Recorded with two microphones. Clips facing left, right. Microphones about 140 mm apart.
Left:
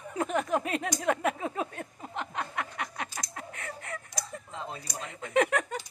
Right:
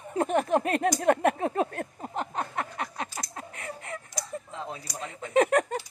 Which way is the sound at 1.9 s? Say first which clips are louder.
Right 2 dB; 35° right (ahead or behind).